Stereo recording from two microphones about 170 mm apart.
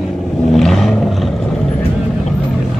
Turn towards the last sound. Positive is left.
turn(degrees=0)  # may be behind; listen again after turning